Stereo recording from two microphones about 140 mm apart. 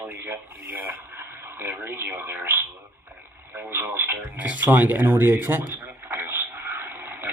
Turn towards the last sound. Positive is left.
turn(degrees=-15)  # may be behind; listen again after turning